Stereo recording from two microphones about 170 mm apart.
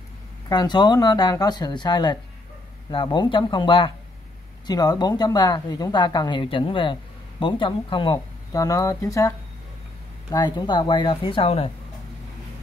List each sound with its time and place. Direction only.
0.5 s speech: 25° left (ahead or behind)
10.3 s speech: 25° left (ahead or behind)